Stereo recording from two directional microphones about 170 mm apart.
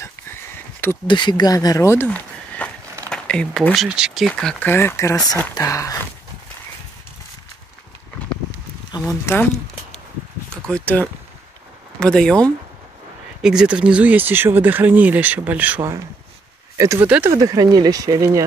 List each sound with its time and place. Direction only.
0.0 s a sound: 15° left (ahead or behind)
1.0 s speech: 25° left (ahead or behind)
8.9 s speech: 15° left (ahead or behind)
10.7 s speech: 10° left (ahead or behind); by 18.4 s 20° right (ahead or behind)